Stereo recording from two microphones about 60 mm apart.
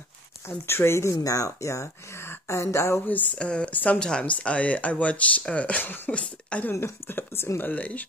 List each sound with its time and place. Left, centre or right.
0.5 s speech: left
1.2 s speech: left
3.1 s speech: left
3.3 s speech: centre
6.7 s speech: left
7.7 s speech: left